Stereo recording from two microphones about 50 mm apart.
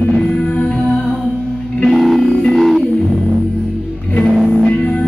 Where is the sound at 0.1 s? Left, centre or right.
Centre.